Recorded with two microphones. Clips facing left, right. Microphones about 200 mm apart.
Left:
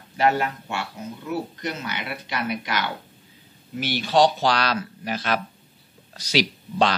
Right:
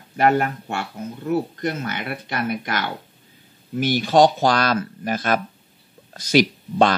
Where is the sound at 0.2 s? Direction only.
55° right (ahead or behind).